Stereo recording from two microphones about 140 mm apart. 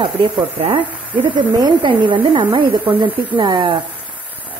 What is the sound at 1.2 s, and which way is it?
A woman's voice, 35° right (ahead or behind).